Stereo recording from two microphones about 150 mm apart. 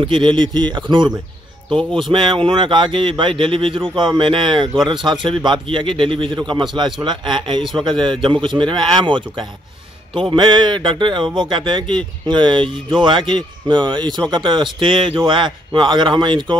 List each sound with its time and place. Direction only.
0.0 s speech: 30° right (ahead or behind)